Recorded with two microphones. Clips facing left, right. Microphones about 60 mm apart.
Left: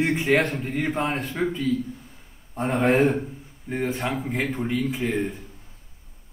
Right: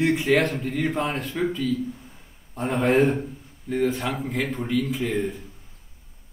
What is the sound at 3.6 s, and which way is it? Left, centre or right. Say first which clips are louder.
Speech: right 4 dB; left.